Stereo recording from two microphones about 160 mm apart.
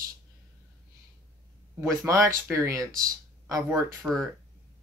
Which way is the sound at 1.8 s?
20° right (ahead or behind).